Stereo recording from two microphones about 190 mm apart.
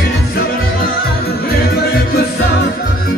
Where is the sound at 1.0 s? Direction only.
55° left (ahead or behind).